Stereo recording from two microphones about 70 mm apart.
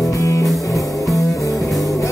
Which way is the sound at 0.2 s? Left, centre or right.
Left.